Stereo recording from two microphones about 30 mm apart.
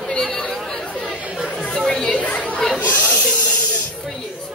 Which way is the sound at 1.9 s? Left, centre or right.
Left.